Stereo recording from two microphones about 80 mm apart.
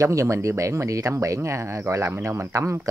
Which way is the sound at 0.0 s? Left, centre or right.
Right.